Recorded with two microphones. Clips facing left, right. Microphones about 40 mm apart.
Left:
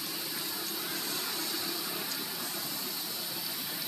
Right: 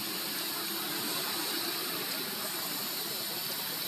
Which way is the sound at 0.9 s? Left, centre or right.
Centre.